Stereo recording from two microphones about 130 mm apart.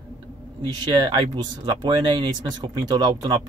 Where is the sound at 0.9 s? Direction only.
40° right (ahead or behind).